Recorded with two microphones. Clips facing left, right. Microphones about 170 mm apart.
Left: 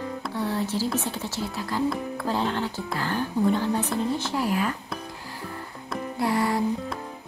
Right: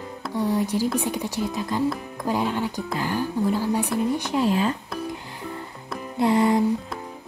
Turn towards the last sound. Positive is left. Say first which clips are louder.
# right 5 dB
turn(degrees=-20)  # may be behind; listen again after turning